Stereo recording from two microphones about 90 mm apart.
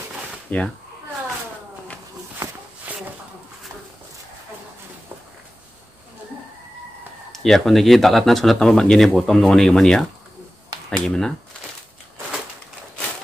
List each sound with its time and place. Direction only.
0.5 s speech: 15° left (ahead or behind)
2.9 s a sound: 15° right (ahead or behind)
7.3 s speech: 5° left (ahead or behind)
11.1 s speech: 5° left (ahead or behind)